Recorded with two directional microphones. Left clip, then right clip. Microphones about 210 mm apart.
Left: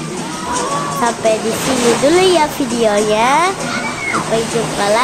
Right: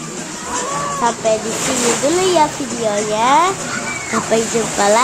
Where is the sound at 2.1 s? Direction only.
15° left (ahead or behind).